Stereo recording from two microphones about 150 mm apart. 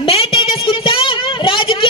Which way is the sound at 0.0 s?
40° left (ahead or behind).